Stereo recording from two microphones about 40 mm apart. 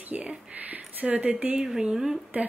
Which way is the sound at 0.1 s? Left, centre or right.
Right.